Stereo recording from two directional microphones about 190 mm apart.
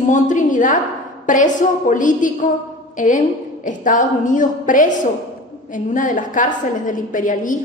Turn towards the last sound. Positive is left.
turn(degrees=45)  # may be behind; listen again after turning